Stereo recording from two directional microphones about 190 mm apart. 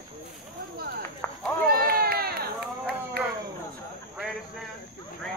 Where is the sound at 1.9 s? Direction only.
50° right (ahead or behind).